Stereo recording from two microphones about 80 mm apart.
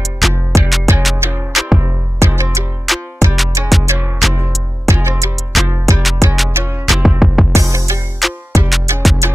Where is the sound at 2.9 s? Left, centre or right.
Centre.